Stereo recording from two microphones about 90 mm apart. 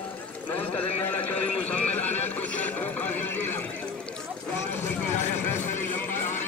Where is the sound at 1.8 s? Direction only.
15° left (ahead or behind).